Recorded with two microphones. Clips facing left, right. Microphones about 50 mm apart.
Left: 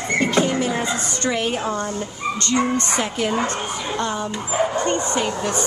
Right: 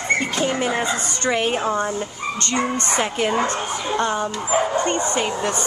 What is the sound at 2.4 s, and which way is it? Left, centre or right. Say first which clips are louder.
Speech: left 2 dB; centre.